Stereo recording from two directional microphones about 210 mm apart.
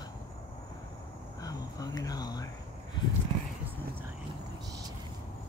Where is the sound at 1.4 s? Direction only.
15° left (ahead or behind).